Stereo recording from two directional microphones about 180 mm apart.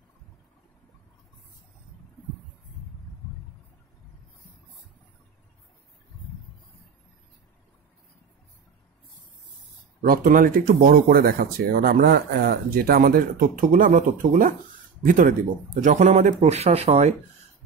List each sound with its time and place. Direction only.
10.0 s speech: 50° right (ahead or behind); by 17.1 s 35° right (ahead or behind)